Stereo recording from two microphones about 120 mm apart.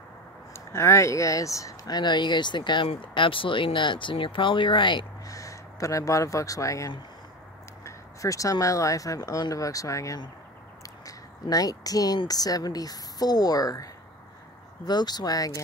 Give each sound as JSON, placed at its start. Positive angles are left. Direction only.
{"t": 0.5, "sound": "speech", "side_deg": 25}
{"t": 5.2, "sound": "speech", "side_deg": 25}
{"t": 10.8, "sound": "a sound", "side_deg": 30}
{"t": 12.2, "sound": "speech", "side_deg": 30}
{"t": 14.9, "sound": "speech", "side_deg": 35}